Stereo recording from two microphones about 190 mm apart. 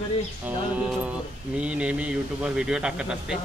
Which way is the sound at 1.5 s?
5° right (ahead or behind).